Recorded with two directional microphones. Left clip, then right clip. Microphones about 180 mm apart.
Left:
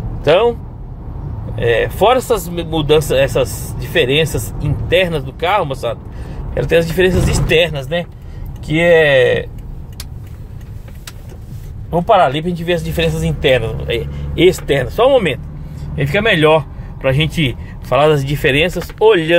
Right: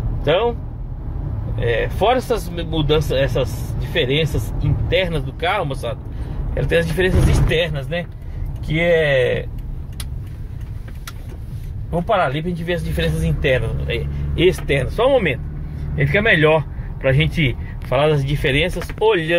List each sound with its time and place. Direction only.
0.2 s speech: 30° left (ahead or behind)
1.6 s speech: 30° left (ahead or behind)
11.9 s a man's voice: 30° left (ahead or behind); by 18.1 s 15° left (ahead or behind)
18.1 s speech: 30° left (ahead or behind)